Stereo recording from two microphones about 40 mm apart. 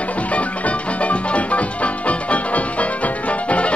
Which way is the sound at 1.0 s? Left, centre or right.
Left.